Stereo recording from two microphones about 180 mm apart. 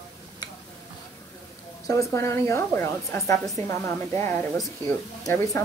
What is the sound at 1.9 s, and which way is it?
A woman's voice, 15° left (ahead or behind).